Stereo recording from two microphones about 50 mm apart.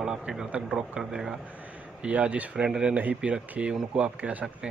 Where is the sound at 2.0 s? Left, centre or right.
Right.